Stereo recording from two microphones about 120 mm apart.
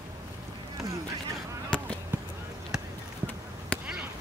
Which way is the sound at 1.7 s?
5° left (ahead or behind).